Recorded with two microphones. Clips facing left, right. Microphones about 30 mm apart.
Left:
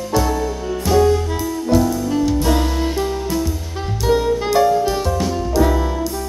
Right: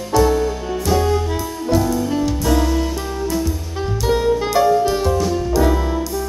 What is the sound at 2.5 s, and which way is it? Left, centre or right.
Music, centre.